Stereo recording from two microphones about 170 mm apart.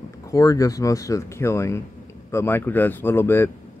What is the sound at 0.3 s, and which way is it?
Speech, 20° left (ahead or behind).